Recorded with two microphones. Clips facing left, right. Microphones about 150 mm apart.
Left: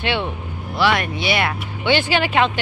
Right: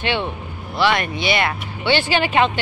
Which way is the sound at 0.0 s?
10° left (ahead or behind).